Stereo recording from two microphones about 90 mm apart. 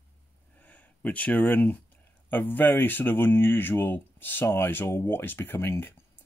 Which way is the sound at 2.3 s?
20° left (ahead or behind).